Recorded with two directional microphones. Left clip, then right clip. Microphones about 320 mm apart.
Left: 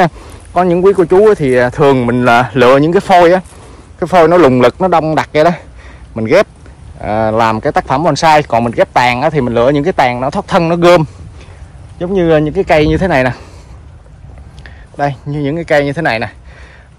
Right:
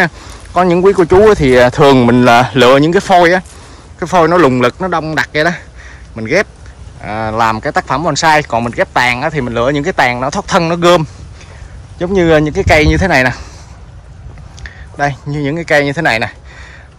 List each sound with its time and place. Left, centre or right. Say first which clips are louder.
0.0 s speech: left 2 dB; centre
14.6 s speech: even; centre